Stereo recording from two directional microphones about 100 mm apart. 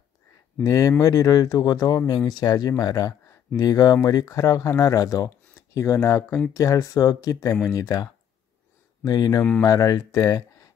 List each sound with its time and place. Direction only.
0.7 s speech: 35° left (ahead or behind)